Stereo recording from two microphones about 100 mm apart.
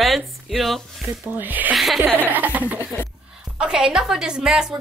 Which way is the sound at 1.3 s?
20° right (ahead or behind).